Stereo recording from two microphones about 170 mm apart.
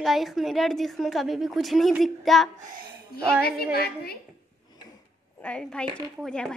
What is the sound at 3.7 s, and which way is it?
Speech, 65° left (ahead or behind).